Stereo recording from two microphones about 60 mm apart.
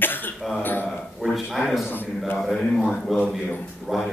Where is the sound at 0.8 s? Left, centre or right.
Centre.